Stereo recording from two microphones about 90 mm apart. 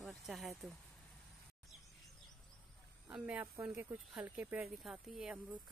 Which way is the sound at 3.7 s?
25° right (ahead or behind).